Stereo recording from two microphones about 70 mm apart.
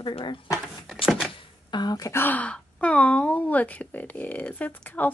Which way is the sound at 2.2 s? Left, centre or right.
Left.